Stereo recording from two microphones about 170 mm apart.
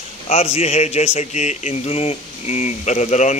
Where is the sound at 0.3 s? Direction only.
35° left (ahead or behind).